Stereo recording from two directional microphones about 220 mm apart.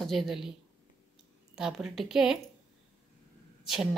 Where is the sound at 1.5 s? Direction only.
Centre (ahead or behind).